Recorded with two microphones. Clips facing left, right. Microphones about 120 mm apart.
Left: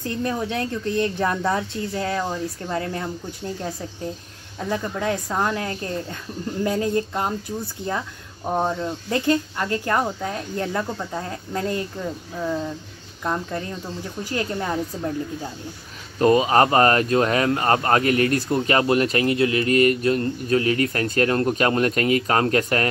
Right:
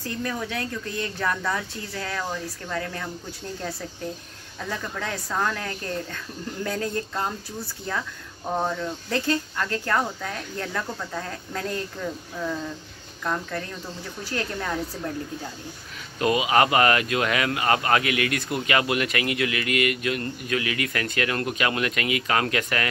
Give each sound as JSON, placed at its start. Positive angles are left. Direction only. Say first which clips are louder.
{"t": 0.0, "sound": "speech", "louder": "left 4 dB", "side_deg": 25}
{"t": 4.6, "sound": "speech", "louder": "left 6 dB", "side_deg": 20}
{"t": 16.2, "sound": "speech", "louder": "left 4 dB", "side_deg": 40}